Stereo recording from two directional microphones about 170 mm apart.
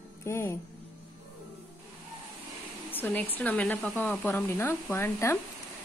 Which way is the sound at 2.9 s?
10° left (ahead or behind).